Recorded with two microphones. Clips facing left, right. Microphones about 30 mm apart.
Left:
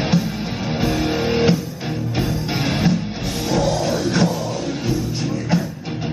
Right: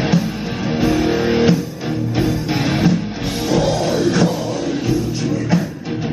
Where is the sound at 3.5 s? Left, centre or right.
Centre.